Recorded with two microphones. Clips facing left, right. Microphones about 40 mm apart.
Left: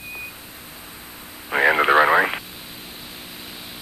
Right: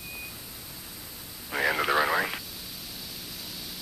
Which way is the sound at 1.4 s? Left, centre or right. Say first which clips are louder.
Left 9 dB; left.